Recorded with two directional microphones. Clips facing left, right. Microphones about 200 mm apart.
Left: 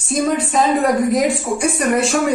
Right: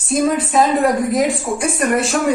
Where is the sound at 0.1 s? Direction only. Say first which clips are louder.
Right 1 dB; centre (ahead or behind).